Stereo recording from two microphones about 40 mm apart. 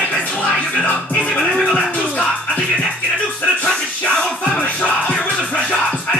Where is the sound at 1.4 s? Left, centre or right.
Centre.